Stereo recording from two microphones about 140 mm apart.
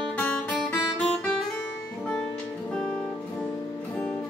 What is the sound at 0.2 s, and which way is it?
Guitar, 10° left (ahead or behind).